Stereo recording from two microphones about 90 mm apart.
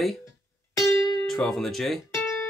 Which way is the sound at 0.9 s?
65° right (ahead or behind).